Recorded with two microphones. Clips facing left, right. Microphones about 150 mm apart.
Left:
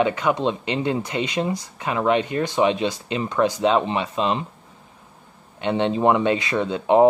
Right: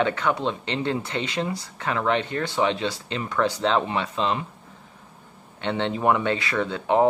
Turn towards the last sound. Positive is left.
turn(degrees=20)  # may be behind; listen again after turning